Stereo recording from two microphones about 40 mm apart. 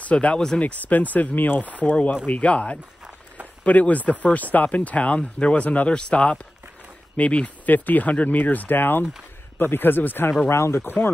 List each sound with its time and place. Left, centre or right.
0.1 s speech: left
1.8 s a man's voice: left
10.9 s speech: left